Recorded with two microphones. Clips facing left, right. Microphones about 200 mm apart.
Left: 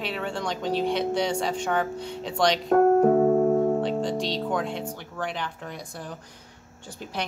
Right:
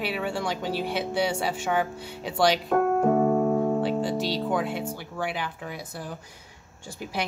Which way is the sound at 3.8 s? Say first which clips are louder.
Even; 5° right (ahead or behind).